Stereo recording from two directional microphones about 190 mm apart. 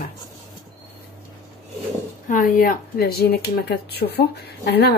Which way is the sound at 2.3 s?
45° left (ahead or behind).